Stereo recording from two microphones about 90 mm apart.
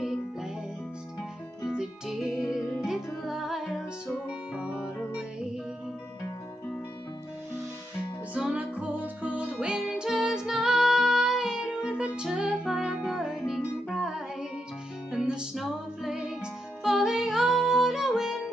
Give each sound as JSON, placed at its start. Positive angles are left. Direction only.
{"t": 0.0, "sound": "music", "side_deg": -5}
{"t": 1.8, "sound": "music", "side_deg": -5}
{"t": 8.4, "sound": "music", "side_deg": -10}